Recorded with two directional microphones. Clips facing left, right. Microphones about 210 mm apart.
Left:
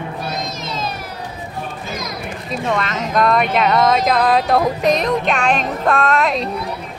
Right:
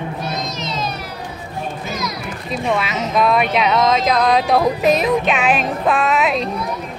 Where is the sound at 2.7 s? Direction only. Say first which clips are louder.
Right 1 dB; 5° right (ahead or behind).